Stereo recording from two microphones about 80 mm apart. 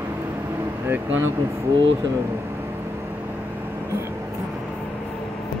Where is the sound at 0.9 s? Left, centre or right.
Right.